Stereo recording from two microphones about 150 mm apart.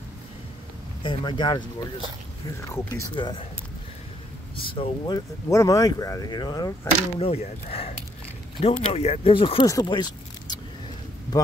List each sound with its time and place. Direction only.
1.0 s speech: 30° left (ahead or behind)
2.6 s speech: 20° left (ahead or behind)
3.2 s speech: 30° left (ahead or behind)
4.7 s speech: 30° left (ahead or behind)
7.2 s speech: 40° left (ahead or behind)